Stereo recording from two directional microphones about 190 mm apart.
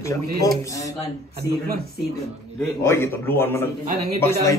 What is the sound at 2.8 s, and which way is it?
Speech, 15° left (ahead or behind).